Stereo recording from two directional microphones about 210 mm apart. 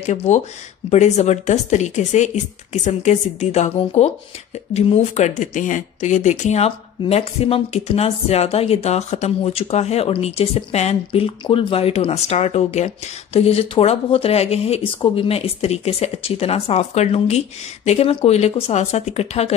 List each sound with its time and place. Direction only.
0.0 s speech: 35° left (ahead or behind)